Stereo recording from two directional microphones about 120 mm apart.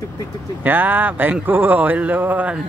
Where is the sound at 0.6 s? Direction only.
15° right (ahead or behind).